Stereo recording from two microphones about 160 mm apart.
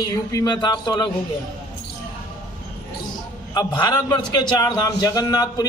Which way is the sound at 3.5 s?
25° left (ahead or behind).